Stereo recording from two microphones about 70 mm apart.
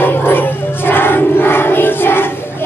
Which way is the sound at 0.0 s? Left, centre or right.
Left.